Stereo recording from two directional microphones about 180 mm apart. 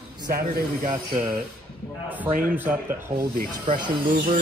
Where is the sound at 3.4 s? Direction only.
50° right (ahead or behind).